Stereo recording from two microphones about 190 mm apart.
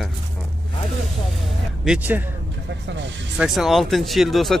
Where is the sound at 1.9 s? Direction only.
10° right (ahead or behind).